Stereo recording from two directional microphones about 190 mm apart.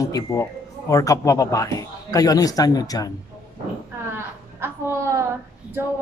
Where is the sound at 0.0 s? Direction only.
15° left (ahead or behind).